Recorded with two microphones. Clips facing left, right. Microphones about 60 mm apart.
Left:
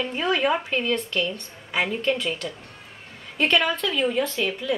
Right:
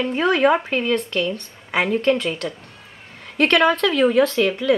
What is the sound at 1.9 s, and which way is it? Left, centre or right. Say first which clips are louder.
Speech: right 6 dB; right.